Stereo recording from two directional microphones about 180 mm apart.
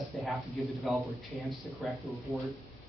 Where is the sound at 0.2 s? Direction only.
Centre (ahead or behind).